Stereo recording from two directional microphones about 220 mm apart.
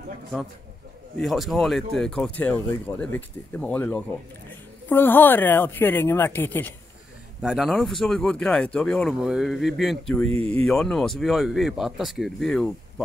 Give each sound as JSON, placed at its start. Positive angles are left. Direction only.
{"t": 1.2, "sound": "speech", "side_deg": 0}
{"t": 7.4, "sound": "speech", "side_deg": 0}
{"t": 10.3, "sound": "speech", "side_deg": -25}
{"t": 10.6, "sound": "speech", "side_deg": 0}